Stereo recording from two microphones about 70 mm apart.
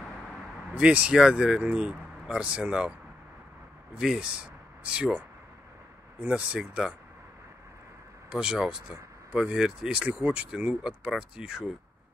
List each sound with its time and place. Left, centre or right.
0.7 s speech: centre
4.0 s speech: centre
6.2 s speech: centre
8.3 s speech: centre